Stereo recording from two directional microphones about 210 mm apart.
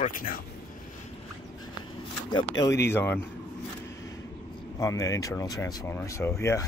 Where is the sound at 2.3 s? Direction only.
15° left (ahead or behind).